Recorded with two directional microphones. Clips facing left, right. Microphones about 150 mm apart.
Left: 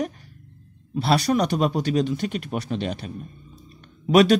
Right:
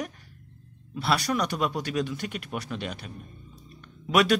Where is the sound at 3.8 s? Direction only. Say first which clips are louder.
Left 7 dB; 30° left (ahead or behind).